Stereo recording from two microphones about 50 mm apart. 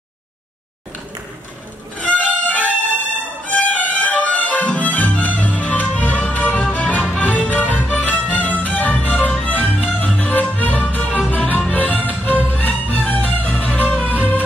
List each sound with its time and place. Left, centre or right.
2.0 s music: left